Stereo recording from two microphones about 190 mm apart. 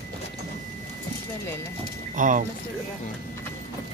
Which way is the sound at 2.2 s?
45° right (ahead or behind).